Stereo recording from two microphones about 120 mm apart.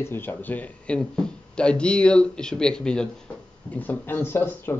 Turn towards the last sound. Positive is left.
turn(degrees=15)  # may be behind; listen again after turning